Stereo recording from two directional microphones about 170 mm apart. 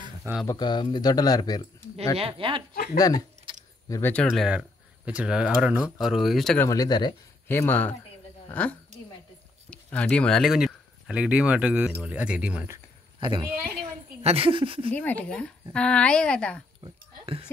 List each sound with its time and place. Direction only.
0.2 s speech: 5° right (ahead or behind)
0.5 s speech: 25° left (ahead or behind)
2.1 s speech: 35° right (ahead or behind)
2.7 s speech: 55° left (ahead or behind)
3.0 s speech: 20° left (ahead or behind)
3.5 s keys jangling: 30° right (ahead or behind)
3.9 s speech: 10° left (ahead or behind)
6.6 s speech: 20° left (ahead or behind)
7.4 s speech: 10° left (ahead or behind); by 12.7 s 5° right (ahead or behind)
13.2 s speech: 30° right (ahead or behind)
14.9 s speech: 10° left (ahead or behind)